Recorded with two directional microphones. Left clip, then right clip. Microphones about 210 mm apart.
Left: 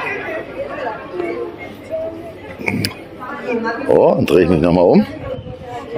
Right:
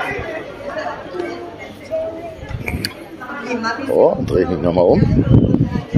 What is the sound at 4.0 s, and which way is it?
Speech, 35° left (ahead or behind).